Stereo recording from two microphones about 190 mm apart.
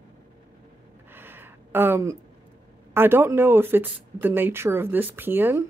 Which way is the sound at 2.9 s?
10° right (ahead or behind).